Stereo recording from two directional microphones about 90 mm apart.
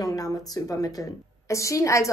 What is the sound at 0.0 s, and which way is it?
A woman's voice, 40° left (ahead or behind).